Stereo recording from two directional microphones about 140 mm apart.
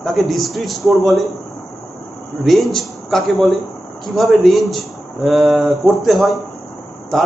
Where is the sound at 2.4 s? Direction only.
Centre (ahead or behind).